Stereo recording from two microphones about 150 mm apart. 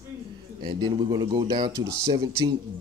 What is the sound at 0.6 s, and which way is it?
Speech, 30° right (ahead or behind).